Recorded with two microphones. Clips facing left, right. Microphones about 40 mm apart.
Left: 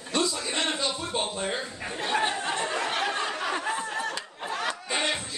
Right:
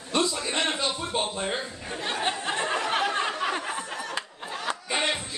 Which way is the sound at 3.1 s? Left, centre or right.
Centre.